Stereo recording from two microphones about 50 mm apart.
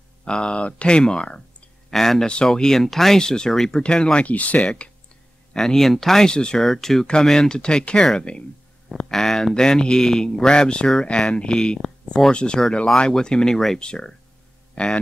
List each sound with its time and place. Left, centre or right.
0.2 s speech: centre
5.5 s speech: centre
6.6 s speech: centre
8.8 s speech: centre